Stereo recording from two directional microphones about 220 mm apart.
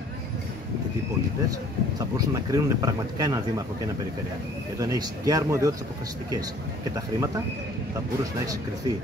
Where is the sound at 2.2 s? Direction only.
15° right (ahead or behind).